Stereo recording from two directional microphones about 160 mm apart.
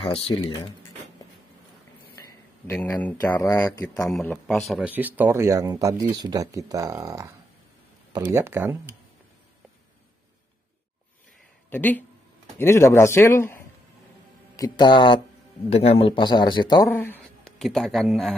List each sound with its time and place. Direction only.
0.3 s speech: 25° left (ahead or behind)
2.2 s speech: 15° left (ahead or behind)
4.1 s speech: 5° left (ahead or behind); by 8.7 s 15° right (ahead or behind)
11.7 s a man's voice: 10° left (ahead or behind)
14.6 s speech: 30° left (ahead or behind)
16.9 s a man's voice: 15° left (ahead or behind)
17.2 s speech: centre (ahead or behind)